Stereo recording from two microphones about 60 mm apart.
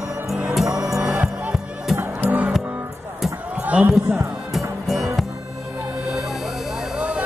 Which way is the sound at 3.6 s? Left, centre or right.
Right.